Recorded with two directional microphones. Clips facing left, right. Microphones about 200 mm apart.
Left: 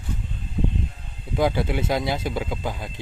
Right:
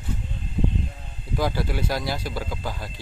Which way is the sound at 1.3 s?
20° left (ahead or behind).